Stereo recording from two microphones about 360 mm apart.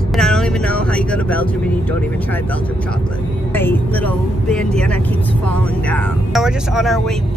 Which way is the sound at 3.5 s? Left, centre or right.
Centre.